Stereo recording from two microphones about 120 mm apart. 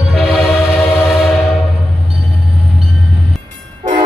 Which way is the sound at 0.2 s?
Centre (ahead or behind).